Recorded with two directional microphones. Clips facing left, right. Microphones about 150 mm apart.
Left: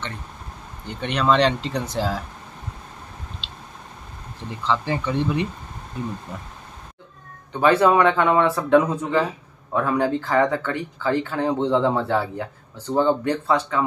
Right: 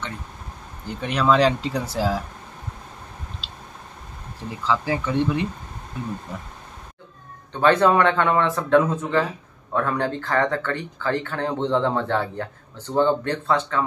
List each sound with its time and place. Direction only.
0.8 s speech: 5° right (ahead or behind)
3.4 s a sound: 5° right (ahead or behind)
4.5 s speech: 5° right (ahead or behind)
7.5 s speech: 10° left (ahead or behind)